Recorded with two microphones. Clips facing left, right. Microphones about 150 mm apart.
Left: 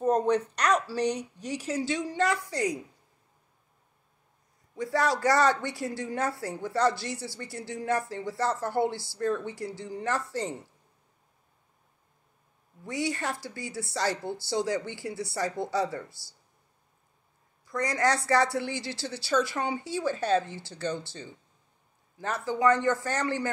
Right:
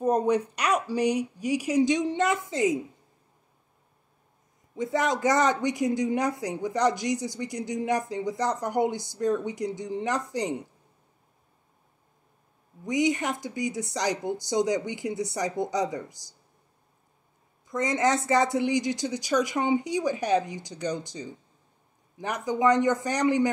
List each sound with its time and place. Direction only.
0.0 s a woman's voice: 10° right (ahead or behind)
4.7 s a woman's voice: 20° right (ahead or behind)
12.8 s a woman's voice: 20° right (ahead or behind)
17.6 s a woman's voice: 20° right (ahead or behind)